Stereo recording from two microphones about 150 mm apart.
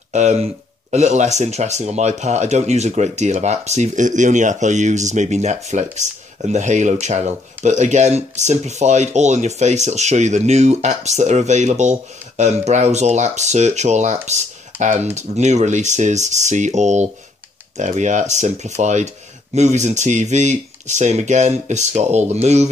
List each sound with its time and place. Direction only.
0.1 s speech: 50° right (ahead or behind)